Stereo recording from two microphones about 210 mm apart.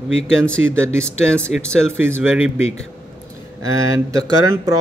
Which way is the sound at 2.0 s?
10° right (ahead or behind).